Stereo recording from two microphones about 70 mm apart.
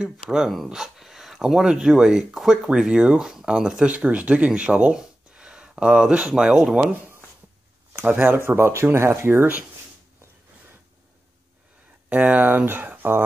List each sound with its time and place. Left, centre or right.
0.0 s speech: centre
4.9 s a sound: centre
7.9 s speech: right
8.5 s speech: right
12.1 s speech: right